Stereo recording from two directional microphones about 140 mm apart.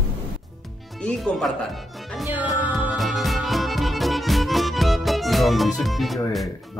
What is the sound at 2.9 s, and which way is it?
Music, centre (ahead or behind).